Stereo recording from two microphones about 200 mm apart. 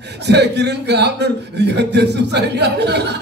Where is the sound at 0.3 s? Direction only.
55° right (ahead or behind).